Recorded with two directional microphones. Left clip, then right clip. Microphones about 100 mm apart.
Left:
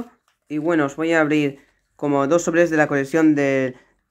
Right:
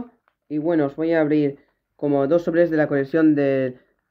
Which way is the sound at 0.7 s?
30° right (ahead or behind).